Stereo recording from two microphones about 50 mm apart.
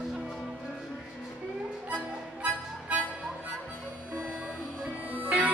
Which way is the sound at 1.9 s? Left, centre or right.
Right.